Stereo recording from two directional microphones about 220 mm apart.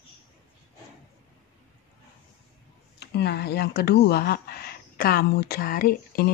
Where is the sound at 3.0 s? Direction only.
50° left (ahead or behind).